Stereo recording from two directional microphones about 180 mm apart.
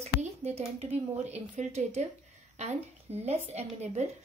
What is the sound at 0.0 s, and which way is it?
A woman's voice, 35° right (ahead or behind).